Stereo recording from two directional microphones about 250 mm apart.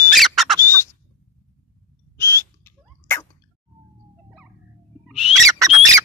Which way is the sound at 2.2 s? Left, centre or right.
Centre.